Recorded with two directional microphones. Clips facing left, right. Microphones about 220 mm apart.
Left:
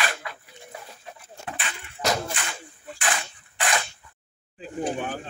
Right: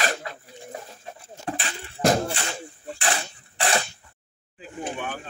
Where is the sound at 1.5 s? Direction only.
35° right (ahead or behind).